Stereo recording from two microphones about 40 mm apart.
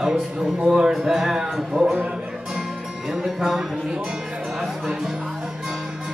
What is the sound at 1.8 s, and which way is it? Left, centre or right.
Speech, right.